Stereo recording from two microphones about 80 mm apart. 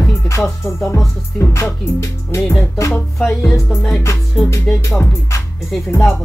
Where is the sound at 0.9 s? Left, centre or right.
Left.